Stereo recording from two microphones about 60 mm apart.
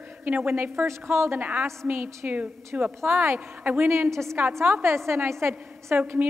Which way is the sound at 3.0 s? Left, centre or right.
Right.